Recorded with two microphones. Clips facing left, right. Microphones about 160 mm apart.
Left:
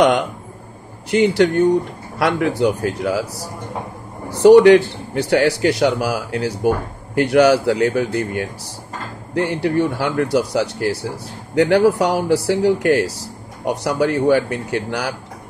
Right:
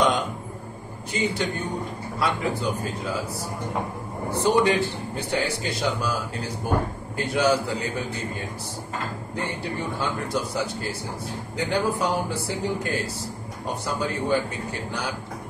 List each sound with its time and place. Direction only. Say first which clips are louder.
1.1 s speech: left 12 dB; 70° left (ahead or behind)